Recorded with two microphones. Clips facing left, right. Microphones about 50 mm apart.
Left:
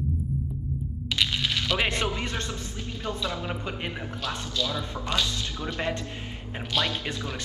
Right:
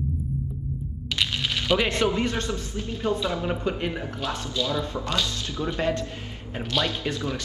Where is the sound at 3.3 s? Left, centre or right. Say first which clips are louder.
Right 5 dB; right.